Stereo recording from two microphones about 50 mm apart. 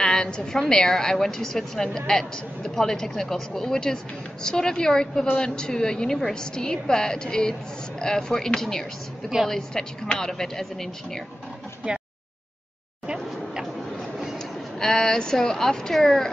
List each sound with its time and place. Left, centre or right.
0.0 s a woman's voice: centre
13.0 s a sound: centre
14.8 s a woman's voice: centre